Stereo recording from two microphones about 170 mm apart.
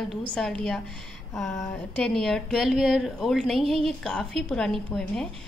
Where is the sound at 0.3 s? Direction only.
5° left (ahead or behind).